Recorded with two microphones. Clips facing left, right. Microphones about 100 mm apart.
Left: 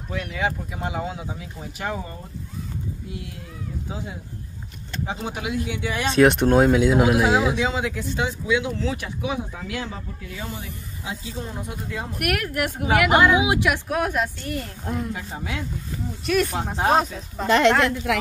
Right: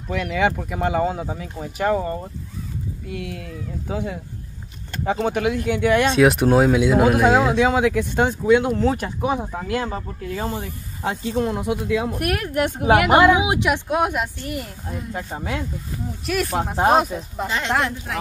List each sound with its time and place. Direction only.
0.1 s speech: 90° right; by 2.1 s 45° right (ahead or behind)
3.1 s speech: 65° right (ahead or behind)
6.1 s speech: 5° right (ahead or behind)
7.3 s speech: 55° right (ahead or behind); by 12.1 s 90° right
12.2 s a woman's voice: 25° right (ahead or behind); by 14.7 s 10° right (ahead or behind)
15.1 s speech: 40° right (ahead or behind)
16.3 s speech: 5° right (ahead or behind)
17.5 s speech: 65° left (ahead or behind)
18.1 s speech: 90° left